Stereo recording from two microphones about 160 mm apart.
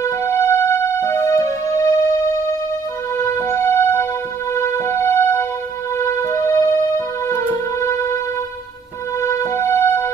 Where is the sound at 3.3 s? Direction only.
15° left (ahead or behind).